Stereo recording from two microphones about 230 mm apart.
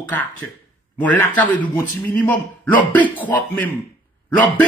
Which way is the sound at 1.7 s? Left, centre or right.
Centre.